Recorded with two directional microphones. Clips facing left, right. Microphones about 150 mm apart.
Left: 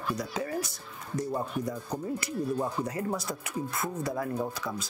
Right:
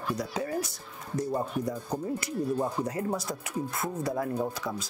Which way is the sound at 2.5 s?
20° right (ahead or behind).